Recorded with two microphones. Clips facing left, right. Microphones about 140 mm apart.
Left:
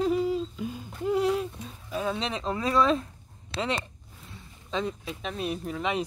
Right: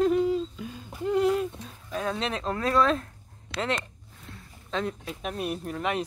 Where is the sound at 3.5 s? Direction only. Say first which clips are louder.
Even; 30° left (ahead or behind).